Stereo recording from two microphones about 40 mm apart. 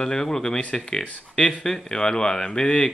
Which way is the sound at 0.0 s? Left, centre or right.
Centre.